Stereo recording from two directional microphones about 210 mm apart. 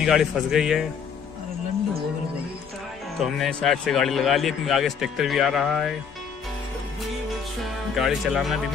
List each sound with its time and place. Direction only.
0.0 s speech: centre (ahead or behind)
3.2 s speech: centre (ahead or behind)
7.9 s speech: centre (ahead or behind)